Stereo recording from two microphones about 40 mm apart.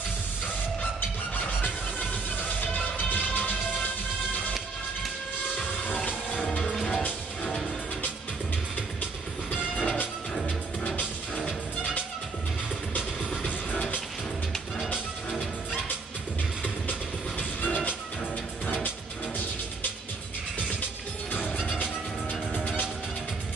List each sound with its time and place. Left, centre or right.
1.3 s music: left
9.8 s music: left
13.4 s music: left
17.4 s music: left
21.5 s music: left